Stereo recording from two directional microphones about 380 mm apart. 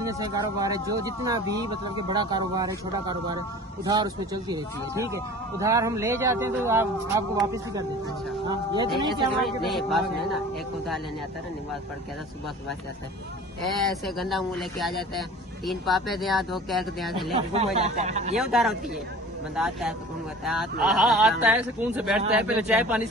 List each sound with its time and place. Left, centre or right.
0.0 s speech: centre
9.4 s a man's voice: centre
13.8 s a man's voice: centre
17.3 s speech: centre
18.3 s a man's voice: centre